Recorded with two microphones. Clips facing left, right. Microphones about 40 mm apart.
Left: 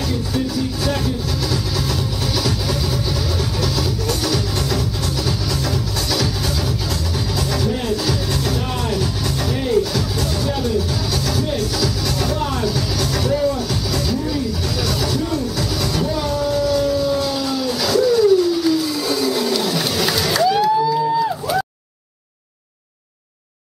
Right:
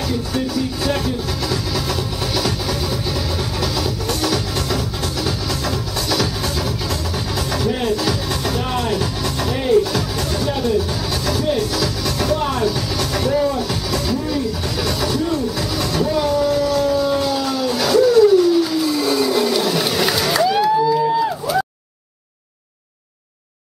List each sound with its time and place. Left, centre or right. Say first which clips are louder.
0.8 s music: right 1 dB; centre
3.6 s music: even; centre
7.5 s music: right 3 dB; centre
8.1 s music: even; centre
12.4 s vehicle: right 2 dB; centre
13.9 s music: right 1 dB; centre
16.4 s howl: right 1 dB; right
16.7 s siren: right 1 dB; centre
17.4 s a sound: right 1 dB; centre